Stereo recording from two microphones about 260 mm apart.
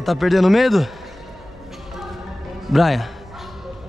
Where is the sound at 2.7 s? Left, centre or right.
Centre.